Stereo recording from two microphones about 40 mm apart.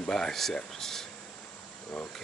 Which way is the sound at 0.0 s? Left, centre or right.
Centre.